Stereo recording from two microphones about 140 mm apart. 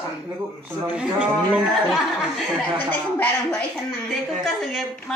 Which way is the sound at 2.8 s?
15° left (ahead or behind).